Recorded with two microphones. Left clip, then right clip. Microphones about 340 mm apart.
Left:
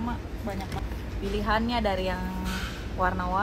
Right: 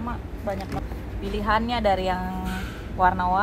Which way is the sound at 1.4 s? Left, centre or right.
Centre.